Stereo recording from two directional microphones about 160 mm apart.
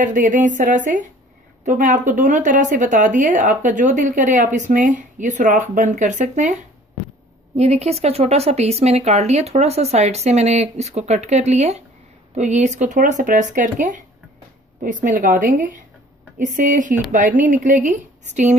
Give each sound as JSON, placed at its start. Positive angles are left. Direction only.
{"t": 0.0, "sound": "speech", "side_deg": -55}
{"t": 7.5, "sound": "a woman's voice", "side_deg": -40}